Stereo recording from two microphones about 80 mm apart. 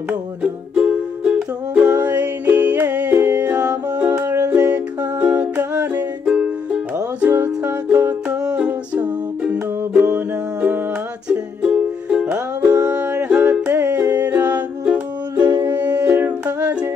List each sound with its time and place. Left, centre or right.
0.4 s music: centre
4.2 s music: right
4.5 s music: right